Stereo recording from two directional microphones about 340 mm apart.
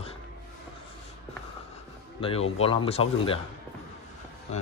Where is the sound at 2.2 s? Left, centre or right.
Centre.